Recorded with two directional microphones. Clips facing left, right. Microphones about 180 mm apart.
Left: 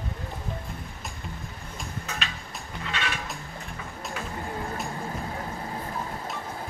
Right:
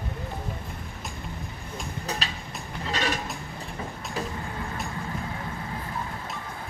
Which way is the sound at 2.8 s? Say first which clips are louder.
Right 4 dB; 40° right (ahead or behind).